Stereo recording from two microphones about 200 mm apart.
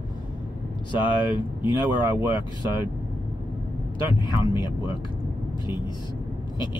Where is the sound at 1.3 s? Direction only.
25° left (ahead or behind).